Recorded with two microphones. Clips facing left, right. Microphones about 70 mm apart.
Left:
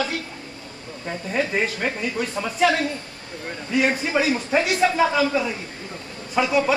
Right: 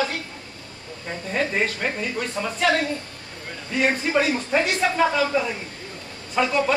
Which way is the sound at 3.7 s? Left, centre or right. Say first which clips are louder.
Even; centre.